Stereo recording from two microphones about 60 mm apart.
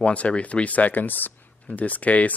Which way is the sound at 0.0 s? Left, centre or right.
Left.